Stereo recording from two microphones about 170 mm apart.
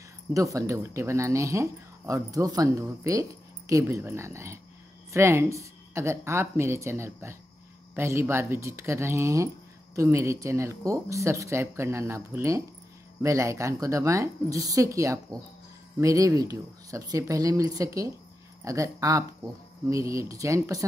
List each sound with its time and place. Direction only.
0.3 s speech: 20° right (ahead or behind)